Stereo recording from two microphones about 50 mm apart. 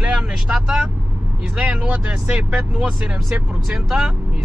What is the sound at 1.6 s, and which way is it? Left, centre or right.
Speech, right.